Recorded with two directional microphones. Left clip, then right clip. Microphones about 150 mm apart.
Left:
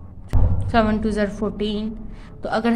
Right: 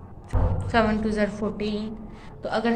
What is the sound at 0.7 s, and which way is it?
A woman's voice, 35° left (ahead or behind).